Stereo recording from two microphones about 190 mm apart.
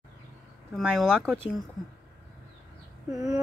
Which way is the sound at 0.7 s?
Centre (ahead or behind).